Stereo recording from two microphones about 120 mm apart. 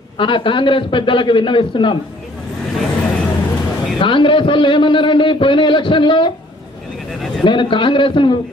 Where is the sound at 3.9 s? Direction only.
45° left (ahead or behind).